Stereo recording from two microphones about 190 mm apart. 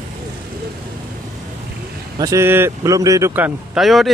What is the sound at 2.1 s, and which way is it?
Speech, 15° right (ahead or behind).